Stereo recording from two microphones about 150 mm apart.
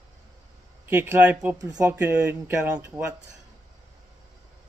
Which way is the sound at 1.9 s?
10° right (ahead or behind).